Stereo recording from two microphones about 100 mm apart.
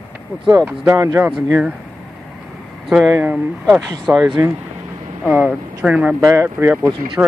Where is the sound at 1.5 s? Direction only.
15° right (ahead or behind).